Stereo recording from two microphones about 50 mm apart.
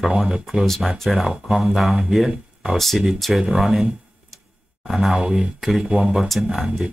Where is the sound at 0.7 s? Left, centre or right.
Centre.